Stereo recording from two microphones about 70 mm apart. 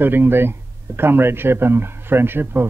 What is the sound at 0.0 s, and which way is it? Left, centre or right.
Speech, right.